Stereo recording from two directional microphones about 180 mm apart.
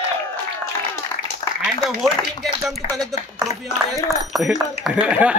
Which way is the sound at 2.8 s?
45° left (ahead or behind).